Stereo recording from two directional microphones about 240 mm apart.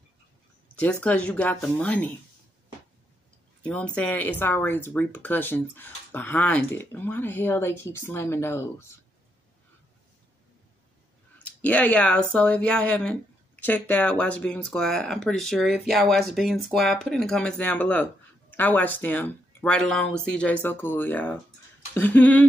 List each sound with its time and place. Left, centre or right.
1.0 s speech: centre
3.6 s speech: centre
11.3 s speech: centre